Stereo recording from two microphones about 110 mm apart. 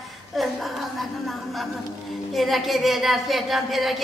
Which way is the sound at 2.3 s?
Centre (ahead or behind).